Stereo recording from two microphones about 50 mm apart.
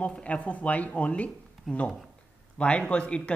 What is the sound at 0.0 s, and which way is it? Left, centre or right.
A man's voice, left.